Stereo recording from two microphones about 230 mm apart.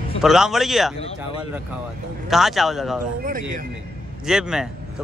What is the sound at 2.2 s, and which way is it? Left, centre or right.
Speech, centre.